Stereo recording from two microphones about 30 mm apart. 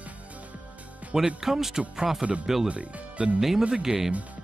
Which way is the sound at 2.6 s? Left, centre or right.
Right.